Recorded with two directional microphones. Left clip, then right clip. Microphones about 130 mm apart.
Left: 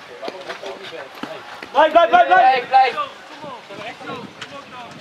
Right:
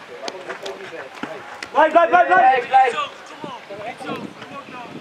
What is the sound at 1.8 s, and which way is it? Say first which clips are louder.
Speech: left 1 dB; 25° left (ahead or behind).